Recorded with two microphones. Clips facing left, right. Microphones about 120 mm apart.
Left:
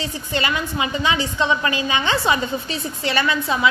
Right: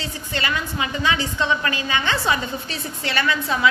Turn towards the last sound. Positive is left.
turn(degrees=15)  # may be behind; listen again after turning